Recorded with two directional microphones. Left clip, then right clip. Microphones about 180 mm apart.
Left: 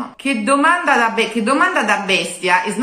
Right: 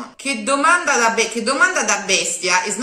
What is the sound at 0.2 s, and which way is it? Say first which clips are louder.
A woman's voice: left 3 dB; 15° right (ahead or behind).